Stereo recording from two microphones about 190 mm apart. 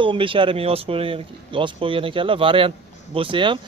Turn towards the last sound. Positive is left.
turn(degrees=-25)  # may be behind; listen again after turning